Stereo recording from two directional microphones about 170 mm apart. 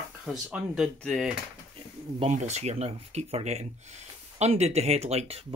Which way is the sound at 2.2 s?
45° right (ahead or behind).